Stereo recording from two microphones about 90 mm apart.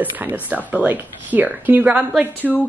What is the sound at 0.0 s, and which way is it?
Speech, 20° right (ahead or behind).